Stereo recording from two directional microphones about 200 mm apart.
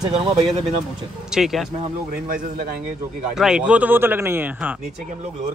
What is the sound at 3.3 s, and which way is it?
A man's voice, 5° right (ahead or behind).